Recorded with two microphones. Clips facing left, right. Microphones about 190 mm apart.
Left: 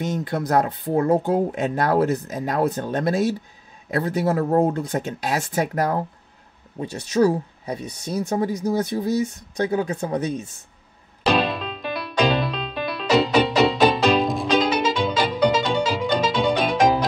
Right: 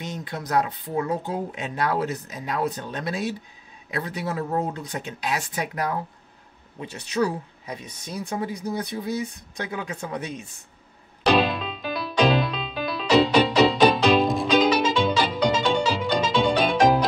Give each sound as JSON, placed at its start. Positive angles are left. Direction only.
{"t": 0.0, "sound": "speech", "side_deg": 50}
{"t": 11.3, "sound": "music", "side_deg": 0}